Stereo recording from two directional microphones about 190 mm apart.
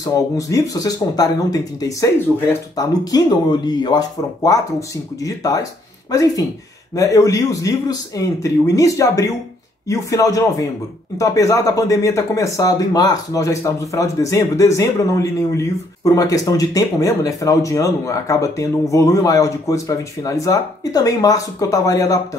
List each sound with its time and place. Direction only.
0.0 s speech: 15° left (ahead or behind)
7.0 s speech: 15° left (ahead or behind)